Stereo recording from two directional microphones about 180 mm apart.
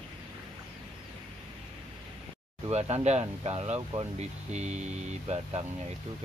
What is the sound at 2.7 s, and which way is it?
Speech, 35° right (ahead or behind).